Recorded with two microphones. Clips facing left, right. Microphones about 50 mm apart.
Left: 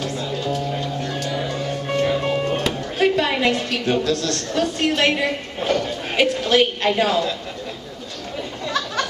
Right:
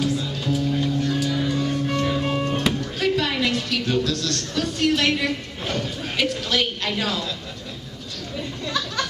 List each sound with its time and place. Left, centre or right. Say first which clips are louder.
0.0 s music: right 2 dB; centre
1.6 s music: left 1 dB; centre
2.8 s a woman's voice: left 4 dB; left
8.6 s a sound: left 3 dB; centre